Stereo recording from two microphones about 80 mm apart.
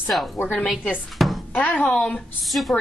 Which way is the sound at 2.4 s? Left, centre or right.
Centre.